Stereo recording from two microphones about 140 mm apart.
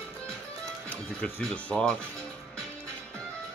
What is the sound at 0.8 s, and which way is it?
Speech, 10° left (ahead or behind).